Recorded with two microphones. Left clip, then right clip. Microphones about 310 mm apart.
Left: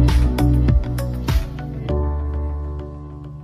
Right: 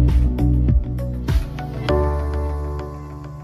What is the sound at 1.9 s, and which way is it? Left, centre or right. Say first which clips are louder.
Music: right 6 dB; right.